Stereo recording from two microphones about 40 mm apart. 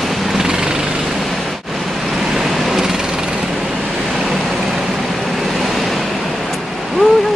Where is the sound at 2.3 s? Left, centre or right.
Centre.